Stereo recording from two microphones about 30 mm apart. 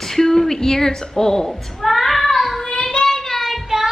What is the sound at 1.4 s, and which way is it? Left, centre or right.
A child's voice, centre.